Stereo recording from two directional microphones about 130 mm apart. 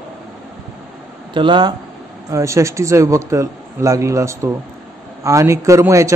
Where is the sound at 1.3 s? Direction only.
40° right (ahead or behind).